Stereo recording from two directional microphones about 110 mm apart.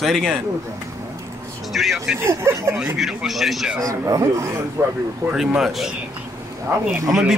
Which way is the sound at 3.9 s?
30° right (ahead or behind).